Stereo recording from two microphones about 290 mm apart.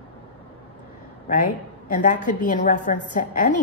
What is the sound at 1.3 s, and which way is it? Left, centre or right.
A woman's voice, left.